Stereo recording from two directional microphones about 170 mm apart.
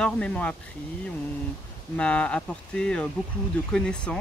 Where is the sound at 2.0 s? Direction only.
5° left (ahead or behind).